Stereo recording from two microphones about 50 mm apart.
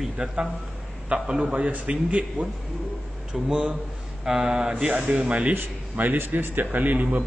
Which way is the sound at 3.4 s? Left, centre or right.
Centre.